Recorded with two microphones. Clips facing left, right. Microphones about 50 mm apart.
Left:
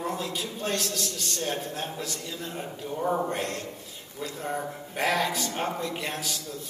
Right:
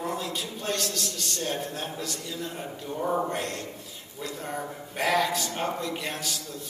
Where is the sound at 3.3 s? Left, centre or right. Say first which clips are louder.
Even; left.